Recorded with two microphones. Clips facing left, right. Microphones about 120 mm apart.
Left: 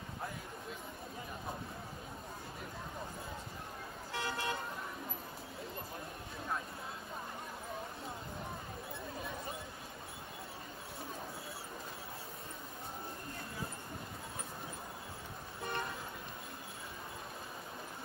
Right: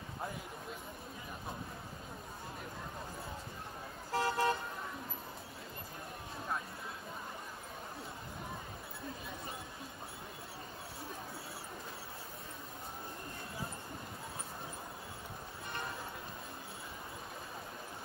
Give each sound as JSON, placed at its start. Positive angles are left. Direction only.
{"t": 4.1, "sound": "vehicle", "side_deg": -40}